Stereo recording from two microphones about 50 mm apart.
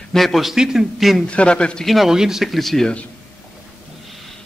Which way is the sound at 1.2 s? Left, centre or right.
Left.